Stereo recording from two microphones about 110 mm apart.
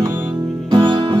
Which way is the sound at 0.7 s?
45° right (ahead or behind).